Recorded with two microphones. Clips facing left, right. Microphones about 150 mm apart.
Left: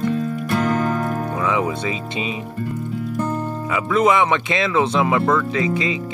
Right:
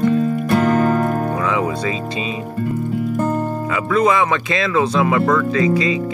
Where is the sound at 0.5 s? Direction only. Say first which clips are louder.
Right 4 dB; 55° right (ahead or behind).